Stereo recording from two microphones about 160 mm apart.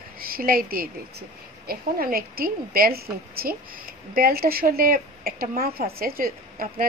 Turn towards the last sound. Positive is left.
turn(degrees=-65)  # may be behind; listen again after turning